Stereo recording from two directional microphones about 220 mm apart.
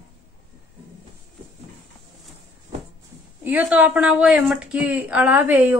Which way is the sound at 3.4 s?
5° right (ahead or behind).